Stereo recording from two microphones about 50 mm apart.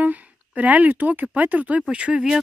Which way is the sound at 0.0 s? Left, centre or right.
Right.